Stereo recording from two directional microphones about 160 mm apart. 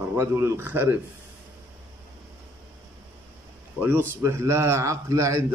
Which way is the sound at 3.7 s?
10° right (ahead or behind).